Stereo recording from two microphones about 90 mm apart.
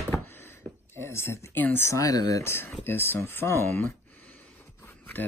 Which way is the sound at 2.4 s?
25° left (ahead or behind).